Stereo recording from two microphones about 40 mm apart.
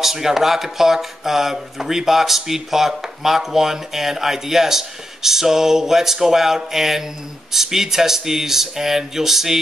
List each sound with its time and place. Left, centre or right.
0.0 s speech: centre